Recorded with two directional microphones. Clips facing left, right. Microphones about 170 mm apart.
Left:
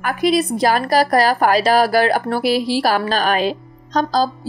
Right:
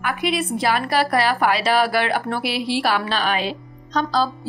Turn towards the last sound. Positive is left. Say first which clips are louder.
# left 3 dB
turn(degrees=40)  # may be behind; listen again after turning